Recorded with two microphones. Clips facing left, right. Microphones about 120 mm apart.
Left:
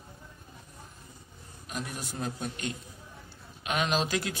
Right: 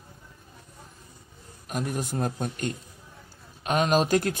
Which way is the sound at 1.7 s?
50° right (ahead or behind).